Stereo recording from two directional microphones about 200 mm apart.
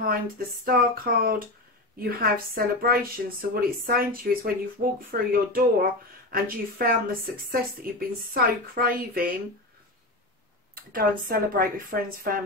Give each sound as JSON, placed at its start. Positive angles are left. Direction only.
{"t": 0.0, "sound": "a woman's voice", "side_deg": -45}
{"t": 10.7, "sound": "a woman's voice", "side_deg": -45}